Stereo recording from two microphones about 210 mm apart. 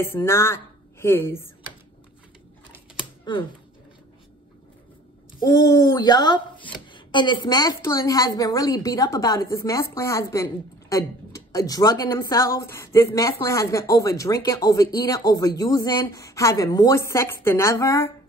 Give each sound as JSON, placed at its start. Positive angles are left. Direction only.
{"t": 0.0, "sound": "a woman's voice", "side_deg": 10}
{"t": 5.4, "sound": "speech", "side_deg": 15}